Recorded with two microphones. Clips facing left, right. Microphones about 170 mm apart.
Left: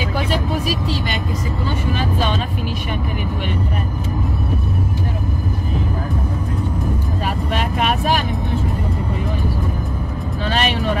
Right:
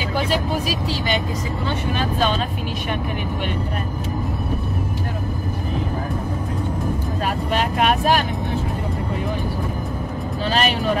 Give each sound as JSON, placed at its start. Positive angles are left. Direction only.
{"t": 0.8, "sound": "speech", "side_deg": 0}
{"t": 10.5, "sound": "speech", "side_deg": -40}